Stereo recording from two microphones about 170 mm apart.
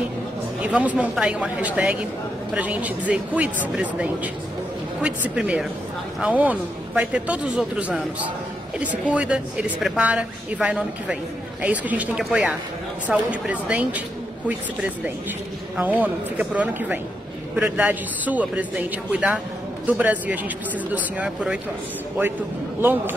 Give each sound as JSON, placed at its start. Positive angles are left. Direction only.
{"t": 0.6, "sound": "a woman's voice", "side_deg": -10}
{"t": 15.7, "sound": "a woman's voice", "side_deg": -10}
{"t": 22.8, "sound": "a woman's voice", "side_deg": -10}